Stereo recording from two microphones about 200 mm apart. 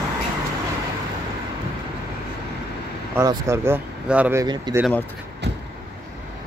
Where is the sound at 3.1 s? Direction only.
15° right (ahead or behind).